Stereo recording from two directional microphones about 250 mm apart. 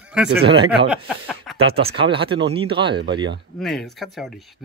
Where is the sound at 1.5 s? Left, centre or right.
Right.